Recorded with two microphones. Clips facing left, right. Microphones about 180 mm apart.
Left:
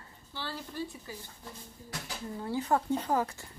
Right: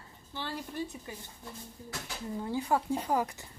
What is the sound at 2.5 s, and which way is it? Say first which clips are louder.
A woman's voice: left 1 dB; 10° right (ahead or behind).